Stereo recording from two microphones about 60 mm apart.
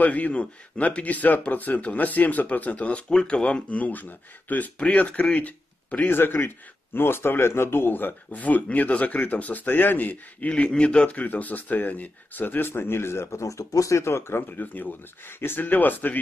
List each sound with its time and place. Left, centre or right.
0.0 s speech: left
6.1 s a man's voice: left
10.5 s a man's voice: centre; by 14.4 s left
14.6 s a man's voice: left